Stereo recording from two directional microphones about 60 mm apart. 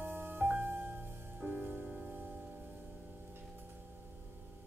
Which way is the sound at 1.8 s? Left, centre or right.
Centre.